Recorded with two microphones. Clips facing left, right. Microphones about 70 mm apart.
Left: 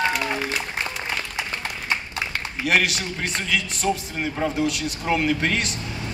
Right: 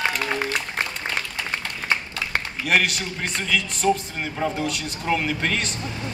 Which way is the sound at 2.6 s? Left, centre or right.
Centre.